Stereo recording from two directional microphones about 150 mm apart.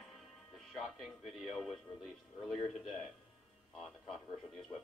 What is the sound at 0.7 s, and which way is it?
Speech, centre (ahead or behind).